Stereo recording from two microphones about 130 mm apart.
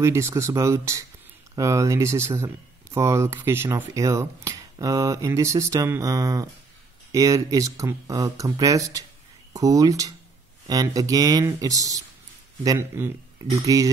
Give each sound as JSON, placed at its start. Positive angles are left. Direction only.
{"t": 0.0, "sound": "speech", "side_deg": -20}